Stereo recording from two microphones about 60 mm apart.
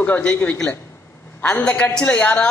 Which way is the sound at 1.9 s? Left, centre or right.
Centre.